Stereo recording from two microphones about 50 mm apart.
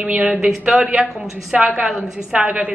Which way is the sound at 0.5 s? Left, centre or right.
Centre.